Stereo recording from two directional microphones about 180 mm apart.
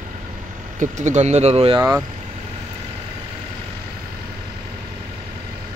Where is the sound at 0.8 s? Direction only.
40° right (ahead or behind).